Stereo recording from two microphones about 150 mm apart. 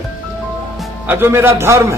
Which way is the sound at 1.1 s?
15° right (ahead or behind).